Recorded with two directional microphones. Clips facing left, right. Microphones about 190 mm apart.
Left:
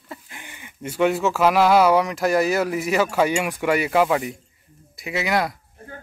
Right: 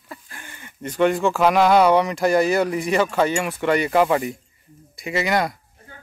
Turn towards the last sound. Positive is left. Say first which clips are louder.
# right 1 dB
turn(degrees=0)  # may be behind; listen again after turning